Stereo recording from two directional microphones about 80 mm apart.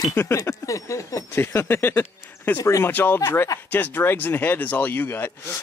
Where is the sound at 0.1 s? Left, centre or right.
Left.